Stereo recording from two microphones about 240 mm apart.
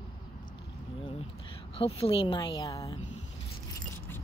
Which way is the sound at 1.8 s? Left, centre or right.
Left.